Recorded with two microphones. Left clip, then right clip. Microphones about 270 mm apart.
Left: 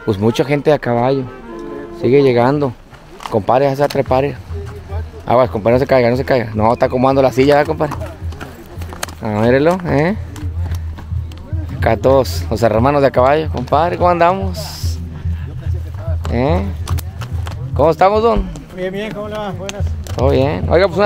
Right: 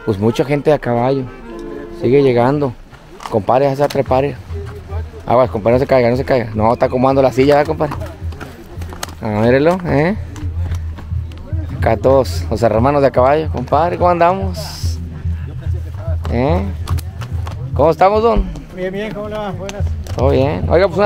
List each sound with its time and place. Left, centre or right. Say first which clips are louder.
0.3 s speech: even; centre
11.8 s speech: even; centre
16.2 s speech: even; centre